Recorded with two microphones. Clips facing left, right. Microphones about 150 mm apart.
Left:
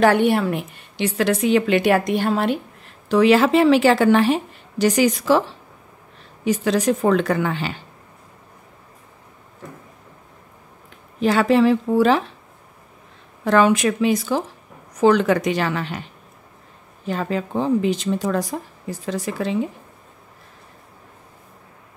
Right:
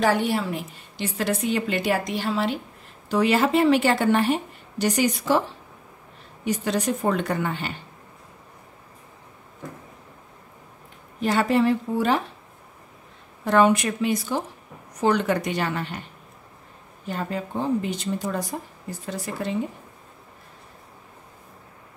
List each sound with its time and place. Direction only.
0.0 s a woman's voice: 60° left (ahead or behind)
3.1 s speech: 90° left
6.4 s speech: 90° left
11.1 s speech: 90° left
13.4 s speech: 90° left
17.1 s speech: 90° left